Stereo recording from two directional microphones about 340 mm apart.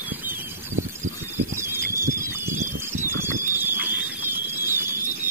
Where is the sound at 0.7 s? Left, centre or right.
Right.